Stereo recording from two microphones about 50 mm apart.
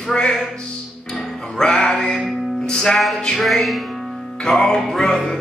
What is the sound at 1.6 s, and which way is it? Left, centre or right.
Music, centre.